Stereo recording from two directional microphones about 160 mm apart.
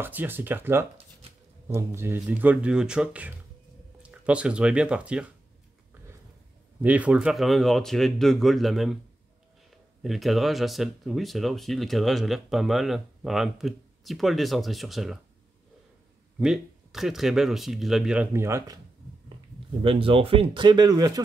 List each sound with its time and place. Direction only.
0.0 s speech: 10° right (ahead or behind)
6.8 s speech: 10° right (ahead or behind)
16.3 s speech: 5° right (ahead or behind)
19.8 s speech: 35° right (ahead or behind)